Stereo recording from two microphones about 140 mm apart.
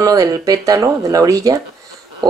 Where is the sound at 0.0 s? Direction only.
25° right (ahead or behind).